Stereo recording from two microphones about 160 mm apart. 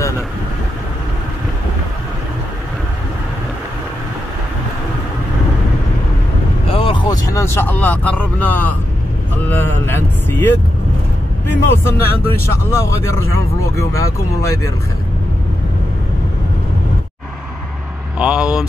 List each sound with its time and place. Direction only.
6.7 s vehicle: 30° left (ahead or behind); by 8.7 s 10° left (ahead or behind)
9.5 s speech: 15° left (ahead or behind)
18.2 s vehicle: 5° right (ahead or behind)